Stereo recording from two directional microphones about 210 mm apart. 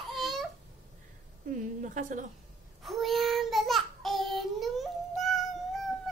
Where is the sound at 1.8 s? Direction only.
35° right (ahead or behind).